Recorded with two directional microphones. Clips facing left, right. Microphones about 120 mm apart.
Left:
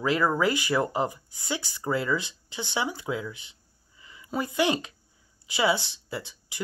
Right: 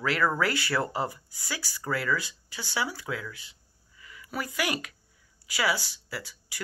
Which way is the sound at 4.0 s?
25° left (ahead or behind).